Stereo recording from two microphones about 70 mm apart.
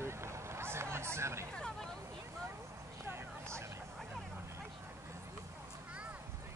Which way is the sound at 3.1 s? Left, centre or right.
Right.